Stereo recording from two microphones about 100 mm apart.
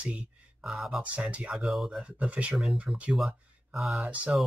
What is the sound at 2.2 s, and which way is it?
Speech, 15° right (ahead or behind).